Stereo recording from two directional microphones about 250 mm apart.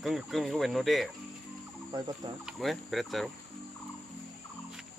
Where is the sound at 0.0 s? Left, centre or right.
Centre.